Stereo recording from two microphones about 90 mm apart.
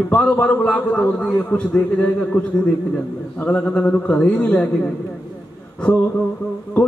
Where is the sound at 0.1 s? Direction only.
15° left (ahead or behind).